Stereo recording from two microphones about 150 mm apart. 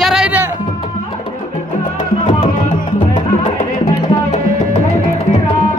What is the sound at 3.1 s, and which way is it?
Music, 50° left (ahead or behind).